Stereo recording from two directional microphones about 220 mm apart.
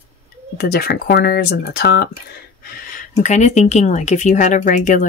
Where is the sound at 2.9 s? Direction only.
35° left (ahead or behind).